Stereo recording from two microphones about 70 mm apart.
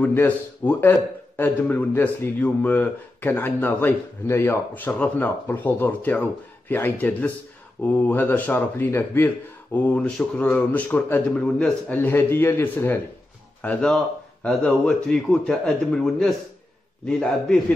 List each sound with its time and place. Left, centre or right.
0.0 s a man's voice: left
4.7 s a man's voice: left
9.8 s a man's voice: left
10.0 s speech: centre
10.4 s a man's voice: left
11.3 s speech: centre
13.6 s speech: centre